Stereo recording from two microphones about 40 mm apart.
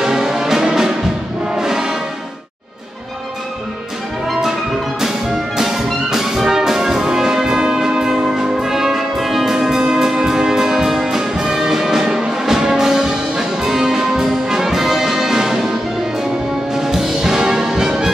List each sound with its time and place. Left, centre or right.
0.0 s music: centre
6.0 s music: centre
16.7 s music: centre